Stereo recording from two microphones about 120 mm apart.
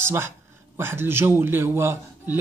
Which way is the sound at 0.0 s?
20° right (ahead or behind).